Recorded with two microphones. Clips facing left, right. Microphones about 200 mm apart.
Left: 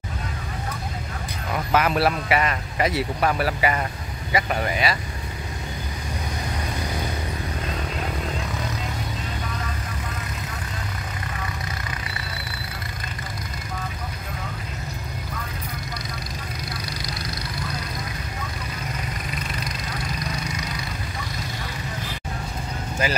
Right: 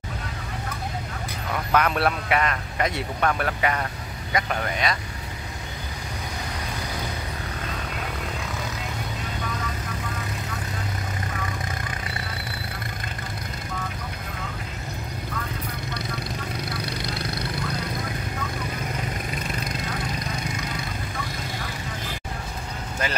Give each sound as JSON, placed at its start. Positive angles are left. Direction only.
{"t": 1.7, "sound": "speech", "side_deg": 5}
{"t": 16.8, "sound": "vehicle", "side_deg": -60}